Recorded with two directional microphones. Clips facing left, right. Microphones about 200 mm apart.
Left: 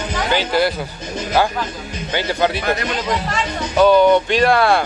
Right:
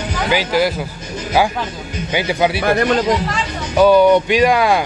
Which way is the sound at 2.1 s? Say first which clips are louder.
Right 2 dB; 10° right (ahead or behind).